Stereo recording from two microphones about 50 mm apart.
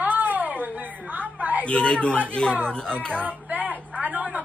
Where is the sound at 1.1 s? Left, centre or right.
Right.